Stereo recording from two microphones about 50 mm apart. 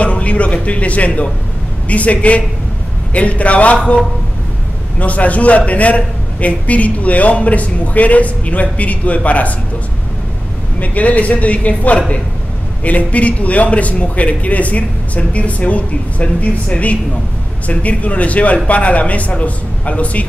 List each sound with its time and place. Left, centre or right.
0.0 s a man's voice: left
10.8 s a man's voice: left